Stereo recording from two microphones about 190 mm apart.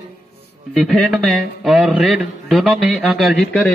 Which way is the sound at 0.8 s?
Centre (ahead or behind).